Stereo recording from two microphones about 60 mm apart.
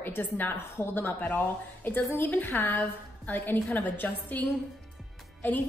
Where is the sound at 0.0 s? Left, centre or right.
Left.